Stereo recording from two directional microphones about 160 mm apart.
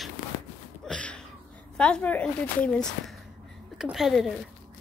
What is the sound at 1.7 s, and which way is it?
A woman's voice, 5° left (ahead or behind).